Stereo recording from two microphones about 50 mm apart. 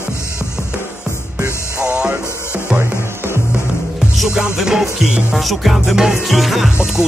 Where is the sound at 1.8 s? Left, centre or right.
Centre.